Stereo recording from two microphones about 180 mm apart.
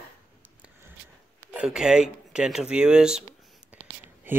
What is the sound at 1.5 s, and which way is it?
Speech, 5° right (ahead or behind).